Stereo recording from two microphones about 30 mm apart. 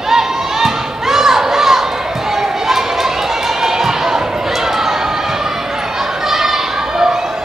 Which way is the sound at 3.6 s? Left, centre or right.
Centre.